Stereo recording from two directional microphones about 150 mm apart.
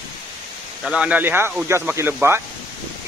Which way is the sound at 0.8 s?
10° right (ahead or behind).